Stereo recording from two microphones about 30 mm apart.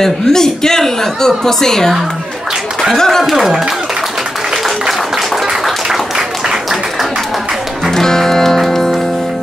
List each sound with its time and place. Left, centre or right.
0.0 s speech: centre
3.0 s speech: centre
3.3 s speech: centre
5.9 s applause: centre
7.9 s music: centre